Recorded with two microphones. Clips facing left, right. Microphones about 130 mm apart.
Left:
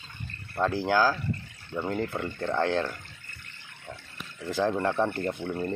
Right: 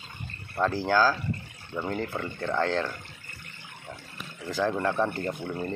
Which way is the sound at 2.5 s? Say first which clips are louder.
Even; 15° left (ahead or behind).